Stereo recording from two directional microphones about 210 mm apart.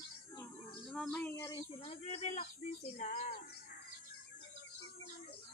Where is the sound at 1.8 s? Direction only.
30° left (ahead or behind).